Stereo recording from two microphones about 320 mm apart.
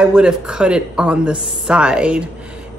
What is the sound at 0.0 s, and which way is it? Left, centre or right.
Speech, centre.